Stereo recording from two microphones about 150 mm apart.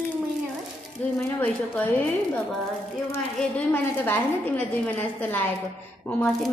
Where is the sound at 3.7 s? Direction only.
15° left (ahead or behind).